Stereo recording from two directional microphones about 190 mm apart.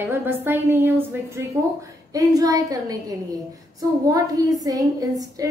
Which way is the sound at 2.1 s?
20° right (ahead or behind).